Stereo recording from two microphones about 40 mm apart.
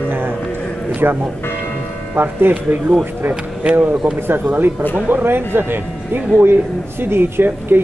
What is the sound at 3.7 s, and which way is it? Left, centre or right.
Speech, right.